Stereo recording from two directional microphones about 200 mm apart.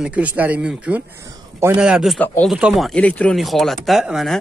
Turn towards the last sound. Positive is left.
turn(degrees=0)  # may be behind; listen again after turning